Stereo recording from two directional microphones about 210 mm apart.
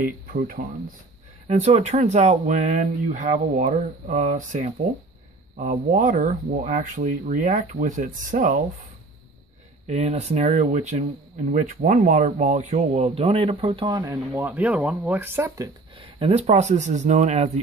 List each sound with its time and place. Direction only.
0.0 s speech: 40° right (ahead or behind)
9.8 s speech: 30° right (ahead or behind)